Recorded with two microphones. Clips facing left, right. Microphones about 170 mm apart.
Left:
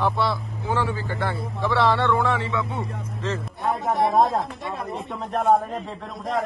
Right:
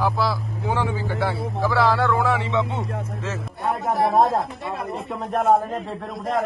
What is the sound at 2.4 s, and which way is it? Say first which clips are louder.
Speech: right 4 dB; 20° right (ahead or behind).